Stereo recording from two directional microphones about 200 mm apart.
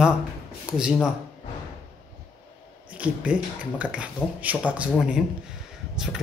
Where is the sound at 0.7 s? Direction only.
5° right (ahead or behind).